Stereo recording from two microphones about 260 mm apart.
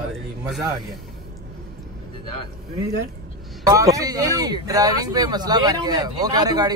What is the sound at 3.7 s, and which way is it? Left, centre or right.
Speech, centre.